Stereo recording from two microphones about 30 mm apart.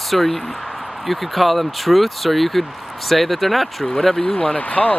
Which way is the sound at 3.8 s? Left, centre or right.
Left.